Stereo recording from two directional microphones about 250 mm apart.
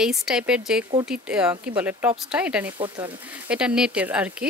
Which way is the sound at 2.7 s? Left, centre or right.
Centre.